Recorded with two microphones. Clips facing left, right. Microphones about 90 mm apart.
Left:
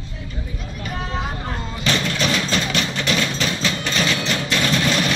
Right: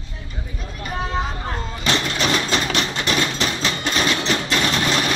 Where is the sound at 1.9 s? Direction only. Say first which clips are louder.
Right 1 dB; 25° right (ahead or behind).